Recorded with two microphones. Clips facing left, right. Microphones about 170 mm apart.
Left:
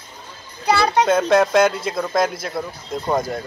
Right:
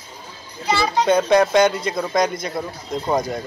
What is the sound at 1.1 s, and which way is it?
A man's voice, centre (ahead or behind).